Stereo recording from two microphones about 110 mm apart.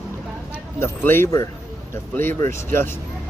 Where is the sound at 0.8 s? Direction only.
20° left (ahead or behind).